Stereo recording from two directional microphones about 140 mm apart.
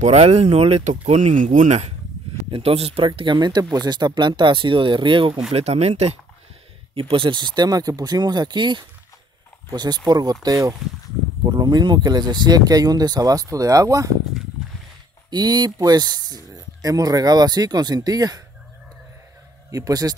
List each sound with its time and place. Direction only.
0.0 s speech: 50° right (ahead or behind)
3.1 s speech: 30° right (ahead or behind)
5.5 s speech: 50° right (ahead or behind)
7.0 s speech: 40° right (ahead or behind)
15.2 s speech: 30° right (ahead or behind)
19.7 s speech: 25° right (ahead or behind)